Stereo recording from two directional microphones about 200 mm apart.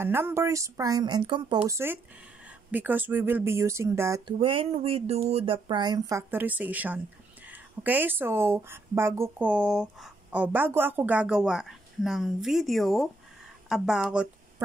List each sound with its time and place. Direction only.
0.0 s speech: 10° right (ahead or behind)
4.3 s speech: 25° right (ahead or behind); by 14.3 s 5° right (ahead or behind)